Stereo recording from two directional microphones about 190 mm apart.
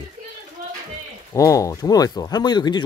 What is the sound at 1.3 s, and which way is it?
Speech, 15° left (ahead or behind).